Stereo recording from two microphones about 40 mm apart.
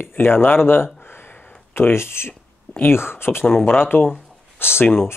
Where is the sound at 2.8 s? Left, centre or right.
Left.